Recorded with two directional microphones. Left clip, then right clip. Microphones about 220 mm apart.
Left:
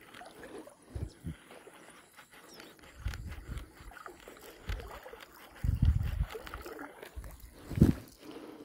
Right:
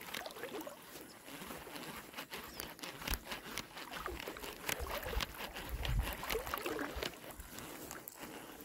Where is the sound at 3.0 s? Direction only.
50° right (ahead or behind).